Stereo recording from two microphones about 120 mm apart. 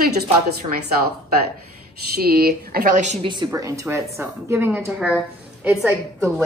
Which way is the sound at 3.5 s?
25° right (ahead or behind).